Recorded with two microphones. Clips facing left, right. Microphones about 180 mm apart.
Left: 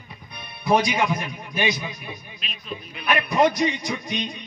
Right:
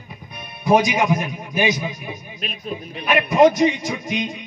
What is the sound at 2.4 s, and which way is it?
Speech, 50° right (ahead or behind).